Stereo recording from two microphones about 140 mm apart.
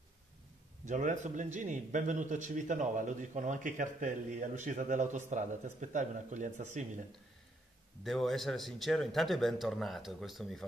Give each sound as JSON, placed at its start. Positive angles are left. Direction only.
{"t": 0.8, "sound": "a man's voice", "side_deg": -65}
{"t": 8.0, "sound": "a man's voice", "side_deg": 0}